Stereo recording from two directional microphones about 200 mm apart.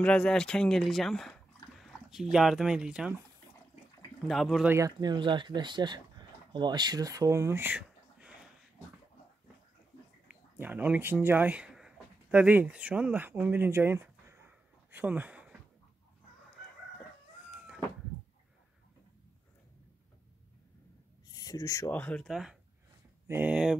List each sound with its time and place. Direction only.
0.0 s speech: 5° left (ahead or behind)
4.3 s speech: centre (ahead or behind)
4.7 s speech: 20° right (ahead or behind)
10.6 s speech: 10° right (ahead or behind)
21.3 s speech: 20° left (ahead or behind); by 23.8 s 5° right (ahead or behind)